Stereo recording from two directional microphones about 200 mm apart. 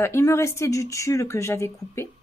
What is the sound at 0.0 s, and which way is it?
Speech, 15° left (ahead or behind).